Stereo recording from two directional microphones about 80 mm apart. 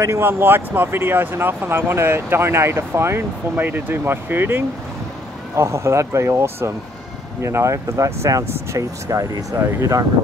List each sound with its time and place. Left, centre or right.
0.0 s speech: right